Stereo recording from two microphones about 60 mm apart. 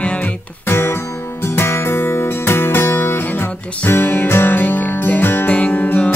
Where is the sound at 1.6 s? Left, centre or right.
Left.